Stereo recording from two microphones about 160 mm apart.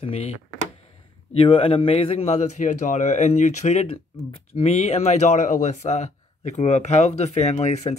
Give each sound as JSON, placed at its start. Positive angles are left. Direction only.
{"t": 1.3, "sound": "a man's voice", "side_deg": 35}